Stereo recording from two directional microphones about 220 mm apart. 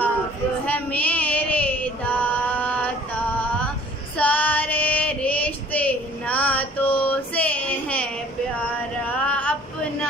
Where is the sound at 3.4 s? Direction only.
5° left (ahead or behind).